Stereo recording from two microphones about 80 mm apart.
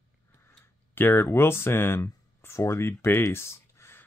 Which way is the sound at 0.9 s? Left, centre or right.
Left.